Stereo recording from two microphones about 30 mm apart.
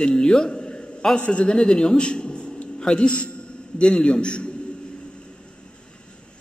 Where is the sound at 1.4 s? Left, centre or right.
Left.